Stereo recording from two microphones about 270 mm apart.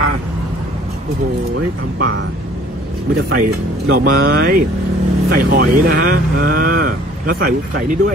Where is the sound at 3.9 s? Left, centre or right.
Right.